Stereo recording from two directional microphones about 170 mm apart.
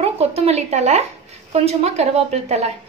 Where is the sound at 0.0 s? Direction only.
40° right (ahead or behind).